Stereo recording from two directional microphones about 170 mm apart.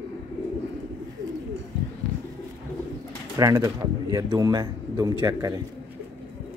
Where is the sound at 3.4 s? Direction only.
20° right (ahead or behind).